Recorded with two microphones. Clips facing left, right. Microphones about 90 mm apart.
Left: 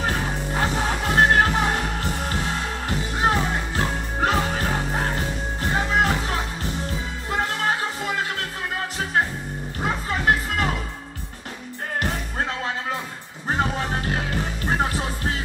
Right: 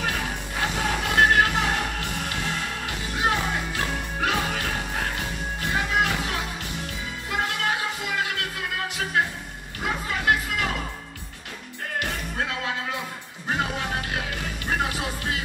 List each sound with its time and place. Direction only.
0.0 s music: 35° left (ahead or behind)
10.0 s music: 35° left (ahead or behind)
13.5 s music: 35° left (ahead or behind)